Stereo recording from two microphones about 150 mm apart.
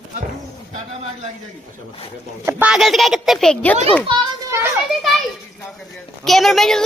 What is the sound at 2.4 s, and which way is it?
Speech, 10° right (ahead or behind).